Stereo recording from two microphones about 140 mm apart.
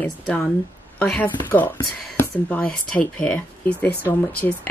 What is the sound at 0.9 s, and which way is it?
Speech, 10° left (ahead or behind).